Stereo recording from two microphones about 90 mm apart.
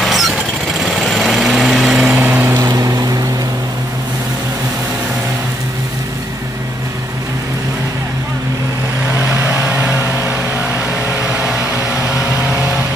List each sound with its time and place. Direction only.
0.0 s vehicle: centre (ahead or behind)
0.7 s light engine: centre (ahead or behind)
2.2 s vehicle: 20° right (ahead or behind)
2.7 s vehicle: 40° right (ahead or behind)
9.4 s vehicle: 25° right (ahead or behind)